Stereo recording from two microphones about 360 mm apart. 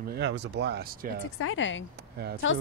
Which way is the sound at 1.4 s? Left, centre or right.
Left.